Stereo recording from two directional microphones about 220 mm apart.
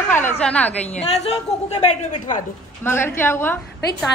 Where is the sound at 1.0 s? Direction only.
30° left (ahead or behind).